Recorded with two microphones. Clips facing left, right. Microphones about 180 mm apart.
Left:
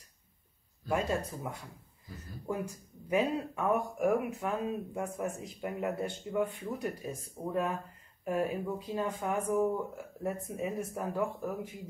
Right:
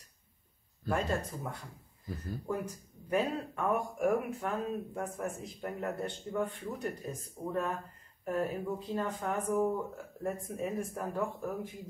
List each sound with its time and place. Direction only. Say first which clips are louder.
0.8 s speech: left 1 dB; 10° left (ahead or behind)